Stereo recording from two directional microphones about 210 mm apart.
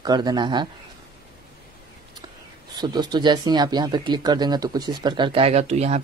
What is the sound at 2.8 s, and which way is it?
Speech, 20° right (ahead or behind).